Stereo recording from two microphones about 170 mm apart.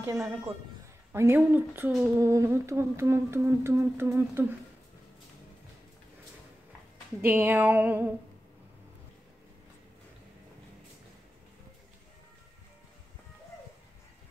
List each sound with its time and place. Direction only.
0.0 s a woman's voice: 15° right (ahead or behind)
1.1 s humming: 15° right (ahead or behind)
7.2 s humming: 10° right (ahead or behind)